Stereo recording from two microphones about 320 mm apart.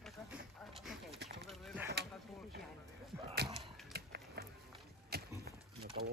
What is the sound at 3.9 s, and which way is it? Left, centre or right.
Music, right.